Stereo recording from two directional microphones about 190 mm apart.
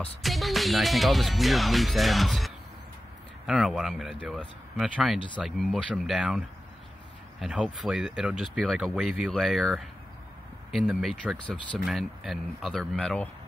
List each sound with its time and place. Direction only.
0.2 s speech: centre (ahead or behind)